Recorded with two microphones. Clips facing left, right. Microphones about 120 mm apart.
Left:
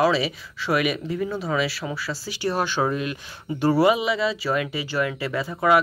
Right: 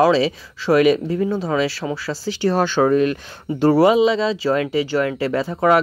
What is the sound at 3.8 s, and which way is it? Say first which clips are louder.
Speech: right 5 dB; 25° right (ahead or behind).